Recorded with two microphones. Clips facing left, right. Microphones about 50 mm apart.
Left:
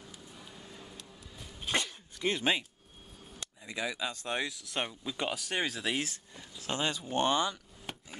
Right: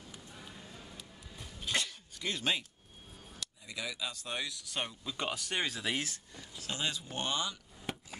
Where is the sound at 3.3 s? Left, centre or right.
Left; by 5.9 s centre.